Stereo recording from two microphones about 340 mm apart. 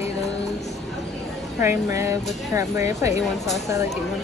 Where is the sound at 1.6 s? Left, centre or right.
Centre.